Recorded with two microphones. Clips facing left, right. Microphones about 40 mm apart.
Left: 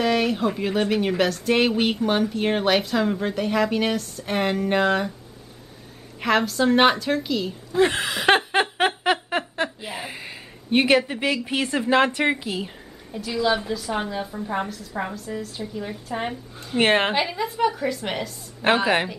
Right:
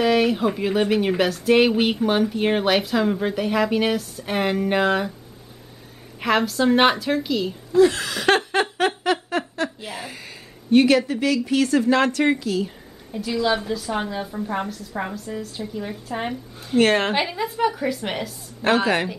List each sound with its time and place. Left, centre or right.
0.0 s speech: centre
6.2 s speech: centre
7.7 s a sound: left
9.8 s speech: centre
13.1 s speech: centre
16.7 s speech: left
17.1 s speech: centre
18.6 s speech: centre